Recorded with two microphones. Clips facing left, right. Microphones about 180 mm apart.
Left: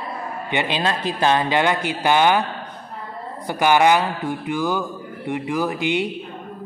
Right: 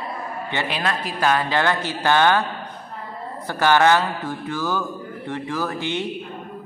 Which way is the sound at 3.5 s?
15° left (ahead or behind).